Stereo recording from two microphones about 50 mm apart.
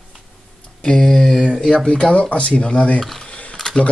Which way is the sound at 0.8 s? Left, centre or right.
Centre.